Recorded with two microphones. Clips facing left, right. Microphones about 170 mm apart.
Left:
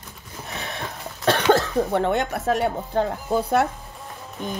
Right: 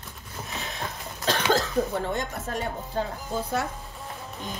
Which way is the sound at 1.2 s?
65° left (ahead or behind).